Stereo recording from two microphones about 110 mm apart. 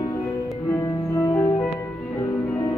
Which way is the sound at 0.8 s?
25° left (ahead or behind).